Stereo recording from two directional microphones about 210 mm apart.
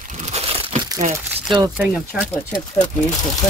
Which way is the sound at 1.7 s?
5° right (ahead or behind).